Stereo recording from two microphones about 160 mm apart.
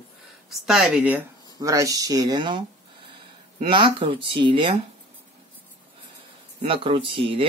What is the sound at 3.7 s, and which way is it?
Speech, 35° right (ahead or behind).